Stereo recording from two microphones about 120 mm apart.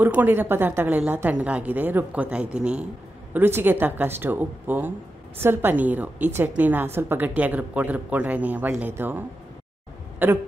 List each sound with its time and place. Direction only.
0.0 s a woman's voice: 15° right (ahead or behind)